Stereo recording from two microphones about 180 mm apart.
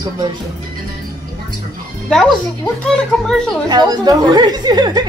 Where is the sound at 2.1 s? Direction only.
Centre (ahead or behind).